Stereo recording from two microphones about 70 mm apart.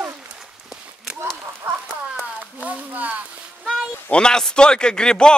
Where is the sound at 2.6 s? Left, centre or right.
Right.